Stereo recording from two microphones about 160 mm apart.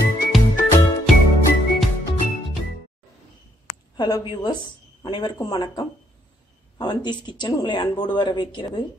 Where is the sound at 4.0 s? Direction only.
25° left (ahead or behind).